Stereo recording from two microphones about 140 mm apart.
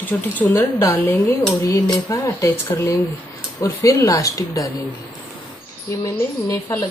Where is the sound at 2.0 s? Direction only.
25° left (ahead or behind).